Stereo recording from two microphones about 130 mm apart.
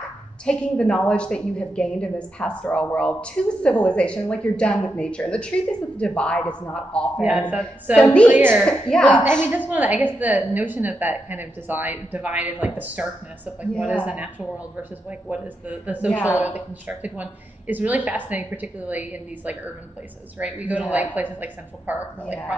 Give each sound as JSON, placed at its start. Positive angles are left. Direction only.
{"t": 0.5, "sound": "a woman's voice", "side_deg": 5}
{"t": 8.3, "sound": "a woman's voice", "side_deg": -15}
{"t": 8.5, "sound": "a woman's voice", "side_deg": 5}
{"t": 9.7, "sound": "a woman's voice", "side_deg": -10}